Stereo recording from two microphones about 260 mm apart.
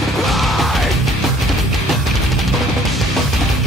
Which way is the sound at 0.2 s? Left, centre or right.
Centre.